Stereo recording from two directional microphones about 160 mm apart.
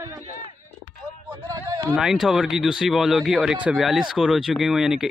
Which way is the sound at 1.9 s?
5° right (ahead or behind).